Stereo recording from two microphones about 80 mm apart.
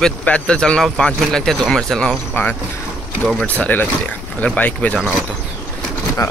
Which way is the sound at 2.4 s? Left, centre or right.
Left.